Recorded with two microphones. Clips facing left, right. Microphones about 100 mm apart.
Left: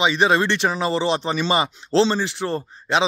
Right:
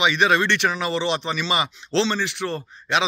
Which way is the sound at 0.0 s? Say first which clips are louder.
Left 1 dB; 30° left (ahead or behind).